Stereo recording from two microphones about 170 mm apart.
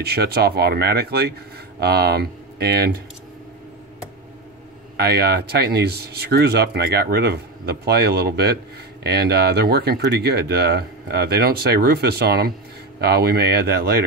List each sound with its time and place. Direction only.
0.0 s speech: 70° right (ahead or behind)
4.9 s speech: 70° right (ahead or behind)